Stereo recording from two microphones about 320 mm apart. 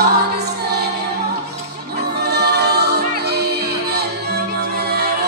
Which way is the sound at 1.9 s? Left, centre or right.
Right.